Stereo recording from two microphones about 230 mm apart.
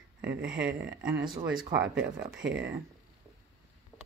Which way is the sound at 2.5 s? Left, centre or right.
Centre.